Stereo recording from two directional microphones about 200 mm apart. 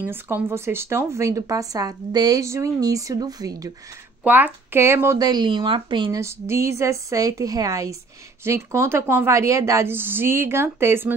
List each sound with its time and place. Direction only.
0.0 s speech: 10° right (ahead or behind)